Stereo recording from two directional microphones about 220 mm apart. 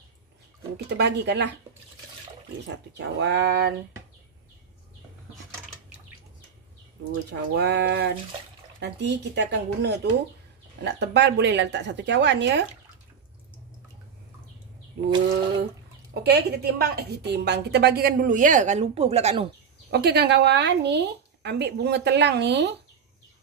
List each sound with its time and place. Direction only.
0.8 s a woman's voice: 50° right (ahead or behind)
2.9 s a woman's voice: 50° right (ahead or behind)
7.2 s a woman's voice: 50° right (ahead or behind)
15.0 s a sound: 50° right (ahead or behind)
16.1 s a woman's voice: 45° right (ahead or behind); by 19.5 s 25° right (ahead or behind)
19.9 s a woman's voice: 45° right (ahead or behind)